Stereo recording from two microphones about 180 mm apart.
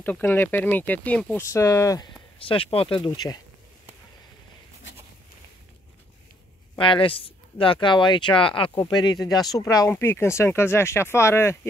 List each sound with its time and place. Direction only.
0.0 s speech: 10° left (ahead or behind)
2.3 s speech: 30° left (ahead or behind)
6.8 s speech: 30° left (ahead or behind)